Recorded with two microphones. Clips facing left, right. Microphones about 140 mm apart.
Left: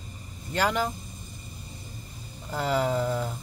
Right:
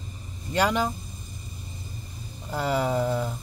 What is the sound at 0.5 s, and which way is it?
Speech, 15° right (ahead or behind).